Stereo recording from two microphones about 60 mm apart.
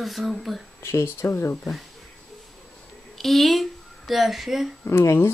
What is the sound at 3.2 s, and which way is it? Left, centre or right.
Speech, centre.